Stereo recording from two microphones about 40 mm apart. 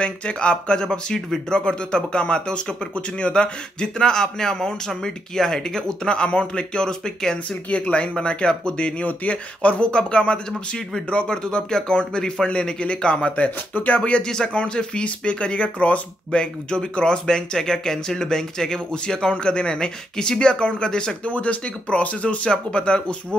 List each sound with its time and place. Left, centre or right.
0.0 s speech: left
7.7 s speech: left
9.0 s speech: left
14.2 s speech: centre
21.3 s speech: left